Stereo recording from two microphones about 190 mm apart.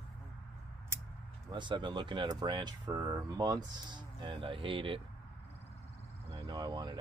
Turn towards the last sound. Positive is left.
turn(degrees=-25)  # may be behind; listen again after turning